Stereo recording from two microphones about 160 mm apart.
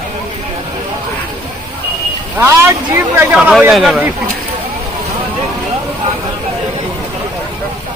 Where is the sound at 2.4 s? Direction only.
15° right (ahead or behind).